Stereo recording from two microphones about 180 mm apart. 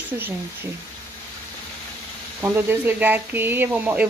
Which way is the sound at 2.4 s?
10° right (ahead or behind).